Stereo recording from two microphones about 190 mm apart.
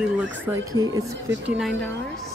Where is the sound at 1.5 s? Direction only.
Centre (ahead or behind).